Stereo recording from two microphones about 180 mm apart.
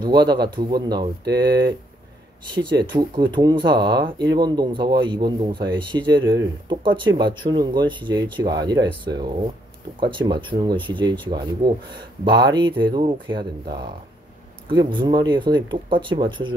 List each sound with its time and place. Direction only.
0.0 s speech: 25° right (ahead or behind)